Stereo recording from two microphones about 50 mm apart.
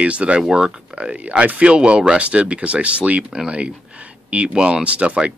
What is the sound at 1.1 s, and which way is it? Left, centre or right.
Speech, right.